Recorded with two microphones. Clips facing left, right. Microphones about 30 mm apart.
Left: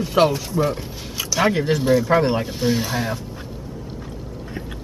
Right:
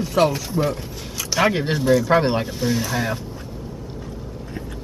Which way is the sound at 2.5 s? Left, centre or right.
Centre.